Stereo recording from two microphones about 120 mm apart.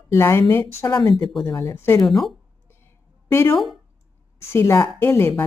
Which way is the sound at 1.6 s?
20° left (ahead or behind).